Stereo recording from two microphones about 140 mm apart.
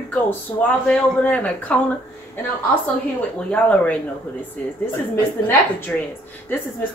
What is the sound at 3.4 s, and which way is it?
Speech, 10° left (ahead or behind).